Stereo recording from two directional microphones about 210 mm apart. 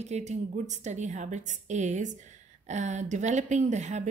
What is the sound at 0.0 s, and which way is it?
Speech, 30° right (ahead or behind).